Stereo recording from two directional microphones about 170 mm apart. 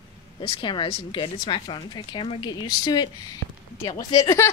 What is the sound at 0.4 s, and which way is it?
Speech, 30° left (ahead or behind).